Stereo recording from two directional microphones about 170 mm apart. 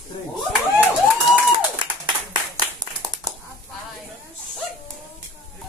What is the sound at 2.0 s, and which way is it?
Clapping, 25° right (ahead or behind).